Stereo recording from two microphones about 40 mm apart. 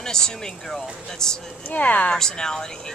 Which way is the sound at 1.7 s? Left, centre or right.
Left.